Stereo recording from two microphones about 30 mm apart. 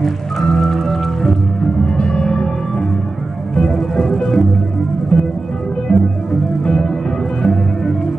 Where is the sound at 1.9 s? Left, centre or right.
Left.